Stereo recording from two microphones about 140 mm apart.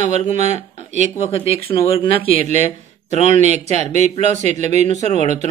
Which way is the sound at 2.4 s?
55° right (ahead or behind).